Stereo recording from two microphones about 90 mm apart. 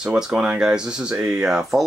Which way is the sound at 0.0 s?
5° right (ahead or behind).